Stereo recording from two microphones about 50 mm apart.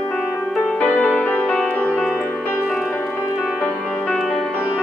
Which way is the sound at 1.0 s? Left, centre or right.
Left.